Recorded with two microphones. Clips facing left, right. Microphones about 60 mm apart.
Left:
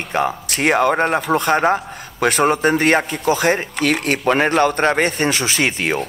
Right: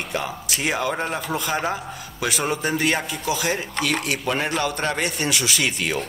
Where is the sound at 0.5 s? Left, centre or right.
Left.